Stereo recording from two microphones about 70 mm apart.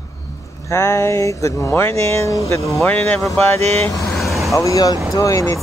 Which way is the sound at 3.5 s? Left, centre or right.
Left.